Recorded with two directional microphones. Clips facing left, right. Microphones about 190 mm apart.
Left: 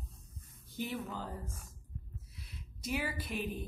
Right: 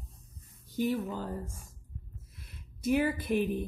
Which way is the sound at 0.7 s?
45° right (ahead or behind).